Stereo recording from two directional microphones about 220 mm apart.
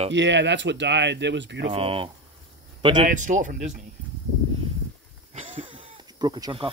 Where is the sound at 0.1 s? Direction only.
55° right (ahead or behind).